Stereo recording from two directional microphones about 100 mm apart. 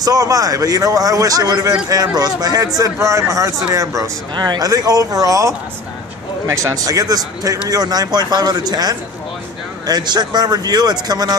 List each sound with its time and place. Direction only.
0.0 s speech: 35° right (ahead or behind)
6.5 s speech: 35° right (ahead or behind)